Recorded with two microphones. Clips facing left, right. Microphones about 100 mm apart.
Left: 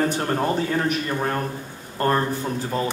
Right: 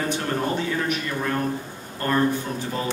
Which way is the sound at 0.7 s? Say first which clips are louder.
Left 2 dB; 40° left (ahead or behind).